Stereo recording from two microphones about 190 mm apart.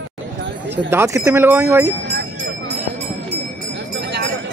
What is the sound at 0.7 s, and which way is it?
Speech, 15° right (ahead or behind).